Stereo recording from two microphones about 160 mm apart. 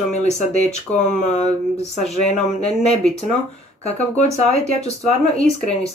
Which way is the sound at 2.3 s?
45° left (ahead or behind).